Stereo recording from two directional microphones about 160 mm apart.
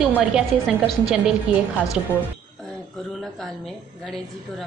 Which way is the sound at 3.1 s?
Centre (ahead or behind).